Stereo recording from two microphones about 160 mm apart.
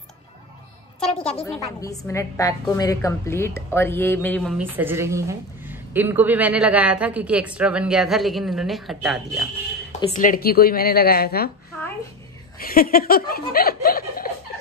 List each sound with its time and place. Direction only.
1.0 s a woman's voice: 40° left (ahead or behind)
1.8 s a woman's voice: 20° left (ahead or behind)
4.5 s a woman's voice: 10° right (ahead or behind)
10.1 s a woman's voice: 60° left (ahead or behind)
12.5 s speech: 65° left (ahead or behind)